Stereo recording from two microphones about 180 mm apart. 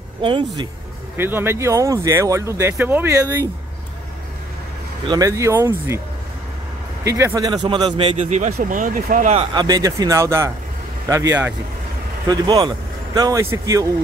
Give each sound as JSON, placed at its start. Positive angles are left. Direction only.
{"t": 0.2, "sound": "speech", "side_deg": -30}
{"t": 1.1, "sound": "speech", "side_deg": -10}
{"t": 5.0, "sound": "speech", "side_deg": -20}
{"t": 7.1, "sound": "speech", "side_deg": -15}
{"t": 9.5, "sound": "speech", "side_deg": -20}
{"t": 12.3, "sound": "speech", "side_deg": -25}